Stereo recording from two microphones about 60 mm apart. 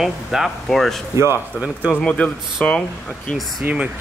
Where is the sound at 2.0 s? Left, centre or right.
Centre.